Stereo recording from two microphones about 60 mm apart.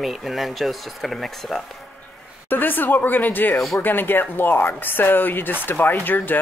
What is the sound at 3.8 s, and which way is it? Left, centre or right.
Speech, left.